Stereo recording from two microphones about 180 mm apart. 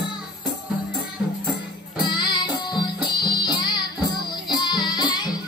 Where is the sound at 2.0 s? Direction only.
25° left (ahead or behind).